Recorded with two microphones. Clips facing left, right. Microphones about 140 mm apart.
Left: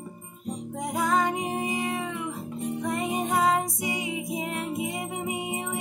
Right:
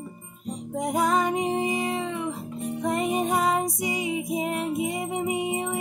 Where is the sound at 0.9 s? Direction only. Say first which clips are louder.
Right 2 dB; 20° right (ahead or behind).